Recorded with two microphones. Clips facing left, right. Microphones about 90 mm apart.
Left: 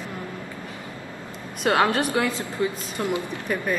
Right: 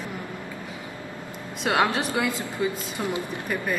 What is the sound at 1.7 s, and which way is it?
A man's voice, 15° right (ahead or behind).